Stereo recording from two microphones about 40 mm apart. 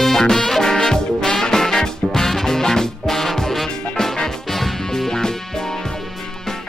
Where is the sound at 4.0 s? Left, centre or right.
Centre.